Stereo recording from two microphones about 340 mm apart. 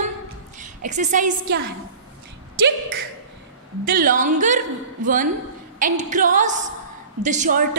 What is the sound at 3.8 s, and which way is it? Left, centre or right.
Speech, right.